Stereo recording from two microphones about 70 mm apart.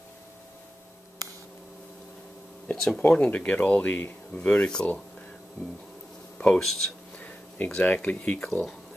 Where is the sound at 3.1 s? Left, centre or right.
Centre.